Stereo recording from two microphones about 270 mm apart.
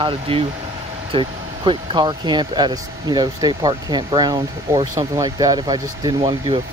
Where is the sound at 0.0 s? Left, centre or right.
Centre.